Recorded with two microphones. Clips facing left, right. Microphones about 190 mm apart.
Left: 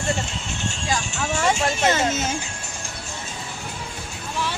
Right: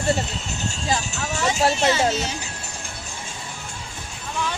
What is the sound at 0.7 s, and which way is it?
Vehicle, 40° right (ahead or behind).